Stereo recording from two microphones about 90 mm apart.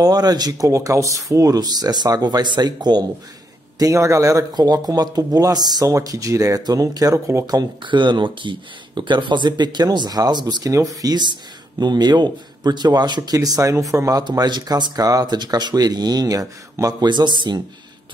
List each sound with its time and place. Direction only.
0.0 s speech: 45° right (ahead or behind)
0.7 s speech: 35° right (ahead or behind); by 3.1 s 50° right (ahead or behind)
3.7 s a man's voice: 35° right (ahead or behind)
7.4 s speech: 55° right (ahead or behind); by 14.2 s 35° right (ahead or behind)
14.3 s speech: 50° right (ahead or behind)